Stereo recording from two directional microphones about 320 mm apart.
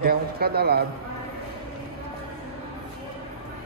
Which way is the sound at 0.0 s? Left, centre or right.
Right.